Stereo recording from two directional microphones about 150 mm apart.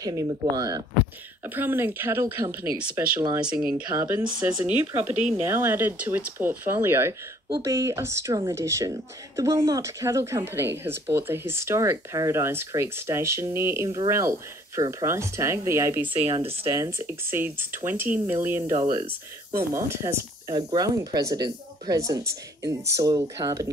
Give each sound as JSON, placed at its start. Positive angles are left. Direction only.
{"t": 0.0, "sound": "speech", "side_deg": -25}
{"t": 1.4, "sound": "speech", "side_deg": -15}
{"t": 16.1, "sound": "speech", "side_deg": -35}
{"t": 16.6, "sound": "speech", "side_deg": -20}
{"t": 19.9, "sound": "speech", "side_deg": -20}